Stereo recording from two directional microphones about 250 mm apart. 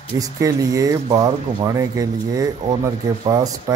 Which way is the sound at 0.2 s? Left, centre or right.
Centre.